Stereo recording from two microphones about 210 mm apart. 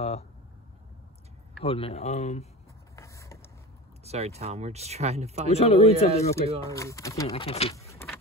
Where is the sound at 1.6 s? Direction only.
30° left (ahead or behind).